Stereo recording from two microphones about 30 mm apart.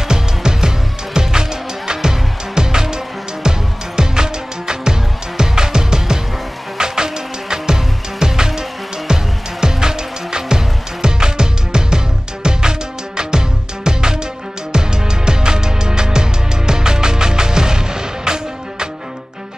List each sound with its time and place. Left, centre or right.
0.1 s music: right
13.8 s music: right